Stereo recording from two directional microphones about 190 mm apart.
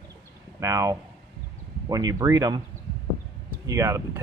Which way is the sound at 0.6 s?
15° right (ahead or behind).